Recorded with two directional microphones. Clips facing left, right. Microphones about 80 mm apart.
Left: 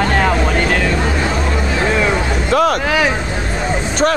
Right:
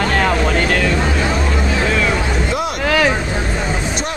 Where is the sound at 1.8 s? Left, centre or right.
Left.